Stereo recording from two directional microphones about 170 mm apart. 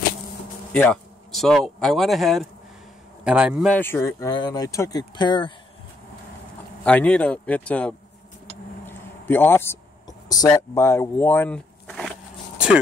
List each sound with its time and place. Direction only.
0.7 s speech: 5° left (ahead or behind)
3.7 s speech: 10° left (ahead or behind)
6.8 s speech: 5° left (ahead or behind)
8.8 s a sound: 10° left (ahead or behind)
10.7 s speech: 15° left (ahead or behind)